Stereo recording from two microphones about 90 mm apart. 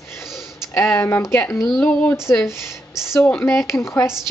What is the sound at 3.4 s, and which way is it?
Speech, 30° left (ahead or behind).